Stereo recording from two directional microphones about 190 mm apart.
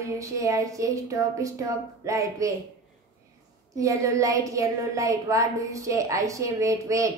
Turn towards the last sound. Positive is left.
turn(degrees=-15)  # may be behind; listen again after turning